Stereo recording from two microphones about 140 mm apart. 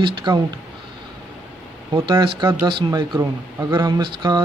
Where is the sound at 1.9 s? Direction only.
35° right (ahead or behind).